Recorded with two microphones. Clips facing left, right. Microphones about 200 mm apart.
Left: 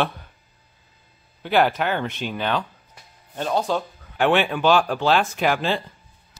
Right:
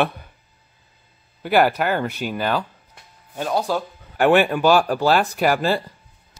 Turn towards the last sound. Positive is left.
turn(degrees=-10)  # may be behind; listen again after turning